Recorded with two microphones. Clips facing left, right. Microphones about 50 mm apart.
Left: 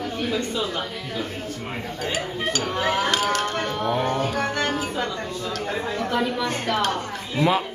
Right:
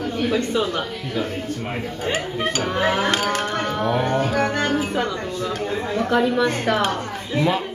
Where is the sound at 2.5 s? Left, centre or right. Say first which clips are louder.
Right 2 dB; right.